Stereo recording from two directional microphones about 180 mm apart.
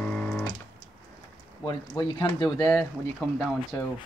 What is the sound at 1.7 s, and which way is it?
Speech, 25° left (ahead or behind).